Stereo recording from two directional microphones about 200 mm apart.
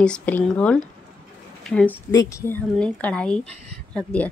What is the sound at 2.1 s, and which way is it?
Speech, 15° left (ahead or behind).